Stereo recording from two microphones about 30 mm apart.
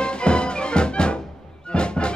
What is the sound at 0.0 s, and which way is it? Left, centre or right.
Music, left.